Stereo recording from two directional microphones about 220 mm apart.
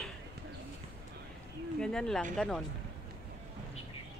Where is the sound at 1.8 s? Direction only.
5° left (ahead or behind).